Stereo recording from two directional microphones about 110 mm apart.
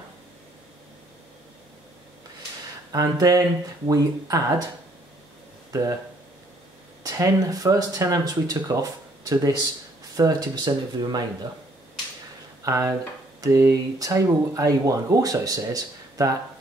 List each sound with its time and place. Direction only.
2.9 s speech: 35° right (ahead or behind)
5.7 s speech: 30° right (ahead or behind)
7.0 s speech: 35° right (ahead or behind)
12.6 s speech: 30° right (ahead or behind)